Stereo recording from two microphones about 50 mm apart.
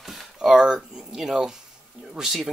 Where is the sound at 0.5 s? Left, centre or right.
Centre.